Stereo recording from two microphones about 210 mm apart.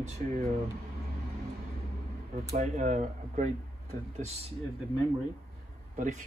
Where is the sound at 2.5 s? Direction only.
35° right (ahead or behind).